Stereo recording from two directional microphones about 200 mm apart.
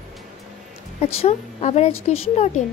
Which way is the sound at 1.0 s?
30° left (ahead or behind).